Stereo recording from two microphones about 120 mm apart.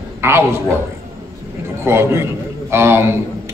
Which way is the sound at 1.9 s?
20° right (ahead or behind).